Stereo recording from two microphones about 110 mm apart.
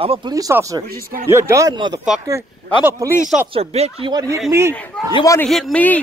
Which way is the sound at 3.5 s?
70° right (ahead or behind).